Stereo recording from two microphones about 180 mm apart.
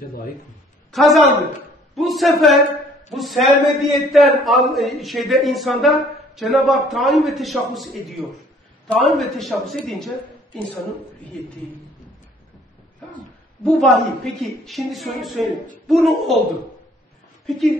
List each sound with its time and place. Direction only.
0.9 s a man's voice: centre (ahead or behind)
13.1 s a man's voice: 5° left (ahead or behind)
17.5 s a man's voice: centre (ahead or behind)